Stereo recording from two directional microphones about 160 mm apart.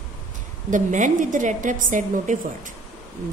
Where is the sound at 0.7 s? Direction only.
50° right (ahead or behind).